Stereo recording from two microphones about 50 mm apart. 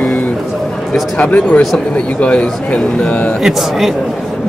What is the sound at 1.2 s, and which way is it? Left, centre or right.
Speech, left.